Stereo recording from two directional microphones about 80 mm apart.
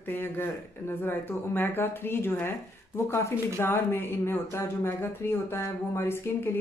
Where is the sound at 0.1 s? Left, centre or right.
Left.